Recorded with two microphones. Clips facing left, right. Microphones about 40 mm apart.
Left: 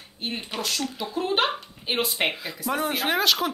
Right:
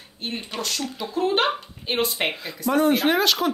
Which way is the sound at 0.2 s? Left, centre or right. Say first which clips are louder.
Right 1 dB; centre.